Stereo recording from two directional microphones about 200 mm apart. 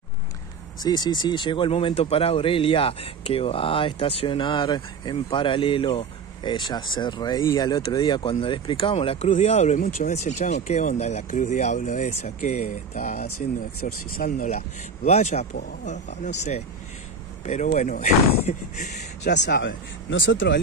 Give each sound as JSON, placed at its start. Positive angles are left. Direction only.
{"t": 0.7, "sound": "speech", "side_deg": 20}
{"t": 13.3, "sound": "speech", "side_deg": 90}
{"t": 14.1, "sound": "speech", "side_deg": 45}
{"t": 17.7, "sound": "speech", "side_deg": 40}
{"t": 19.2, "sound": "speech", "side_deg": 60}